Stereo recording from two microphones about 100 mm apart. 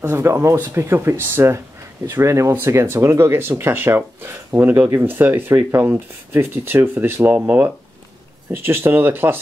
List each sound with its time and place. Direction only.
0.0 s speech: 25° right (ahead or behind)